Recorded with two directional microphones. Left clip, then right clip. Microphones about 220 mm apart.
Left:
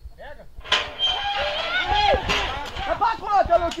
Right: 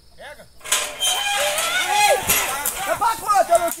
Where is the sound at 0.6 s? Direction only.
20° right (ahead or behind).